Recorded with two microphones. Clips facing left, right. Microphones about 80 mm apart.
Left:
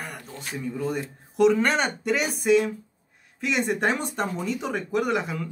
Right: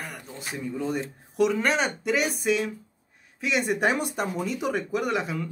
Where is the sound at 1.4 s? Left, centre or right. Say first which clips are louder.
Left 3 dB; centre.